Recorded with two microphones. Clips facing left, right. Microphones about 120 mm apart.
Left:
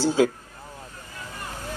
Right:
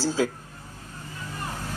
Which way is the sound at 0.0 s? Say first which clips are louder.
Left 5 dB; 20° left (ahead or behind).